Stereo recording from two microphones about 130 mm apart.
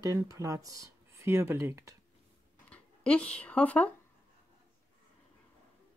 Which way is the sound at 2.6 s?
10° left (ahead or behind).